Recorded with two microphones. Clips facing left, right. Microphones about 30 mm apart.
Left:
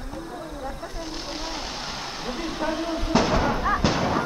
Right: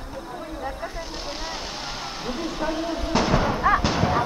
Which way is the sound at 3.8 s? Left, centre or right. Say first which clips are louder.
Even; centre.